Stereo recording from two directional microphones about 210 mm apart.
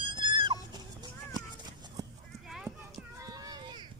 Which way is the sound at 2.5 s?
Centre (ahead or behind).